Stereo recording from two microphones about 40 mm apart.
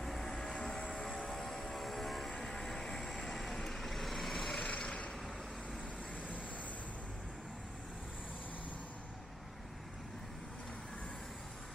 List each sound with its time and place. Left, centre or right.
0.0 s vehicle: centre
4.6 s vehicle: left